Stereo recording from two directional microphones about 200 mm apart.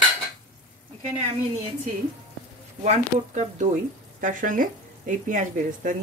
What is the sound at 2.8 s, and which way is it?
Speech, 35° right (ahead or behind).